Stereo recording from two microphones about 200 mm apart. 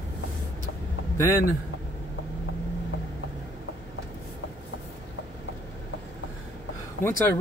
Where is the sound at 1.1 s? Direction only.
10° left (ahead or behind).